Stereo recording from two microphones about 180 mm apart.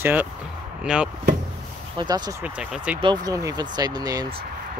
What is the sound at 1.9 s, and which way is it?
Speech, 25° right (ahead or behind).